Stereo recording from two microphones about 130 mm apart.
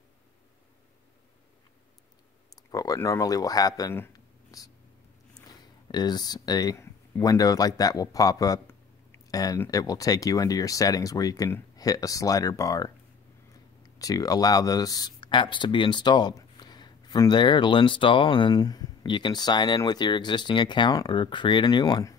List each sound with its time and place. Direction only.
2.5 s speech: 25° left (ahead or behind)
4.1 s a sound: 30° left (ahead or behind)
5.9 s speech: 35° left (ahead or behind)
13.9 s speech: 25° left (ahead or behind)